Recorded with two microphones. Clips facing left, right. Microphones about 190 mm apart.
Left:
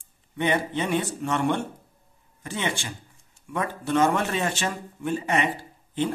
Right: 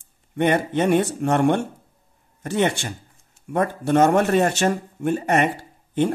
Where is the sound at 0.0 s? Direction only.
50° right (ahead or behind).